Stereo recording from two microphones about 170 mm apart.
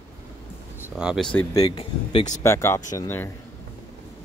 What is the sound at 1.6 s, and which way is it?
Speech, 35° left (ahead or behind).